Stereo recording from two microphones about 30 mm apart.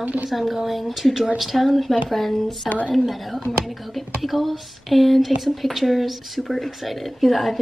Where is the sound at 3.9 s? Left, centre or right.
Centre.